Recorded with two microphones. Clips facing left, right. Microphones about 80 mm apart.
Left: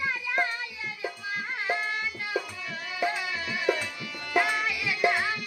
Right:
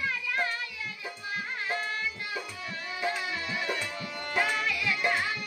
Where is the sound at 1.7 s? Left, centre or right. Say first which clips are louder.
Left 3 dB; left.